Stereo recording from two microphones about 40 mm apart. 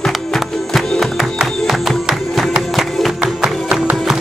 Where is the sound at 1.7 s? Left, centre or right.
Centre.